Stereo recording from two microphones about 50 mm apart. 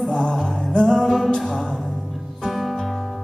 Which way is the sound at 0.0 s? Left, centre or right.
Centre.